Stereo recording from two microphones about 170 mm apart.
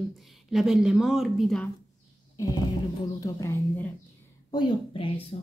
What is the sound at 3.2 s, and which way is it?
Speech, 15° left (ahead or behind).